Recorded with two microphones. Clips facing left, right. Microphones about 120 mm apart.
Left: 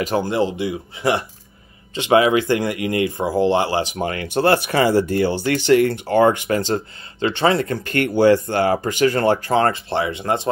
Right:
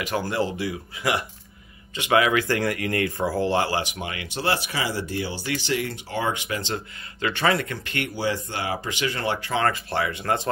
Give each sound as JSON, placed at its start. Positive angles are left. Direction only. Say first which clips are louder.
{"t": 0.2, "sound": "speech", "louder": "left 5 dB", "side_deg": 20}
{"t": 4.0, "sound": "speech", "louder": "left 9 dB", "side_deg": 45}
{"t": 7.2, "sound": "speech", "louder": "left 5 dB", "side_deg": 30}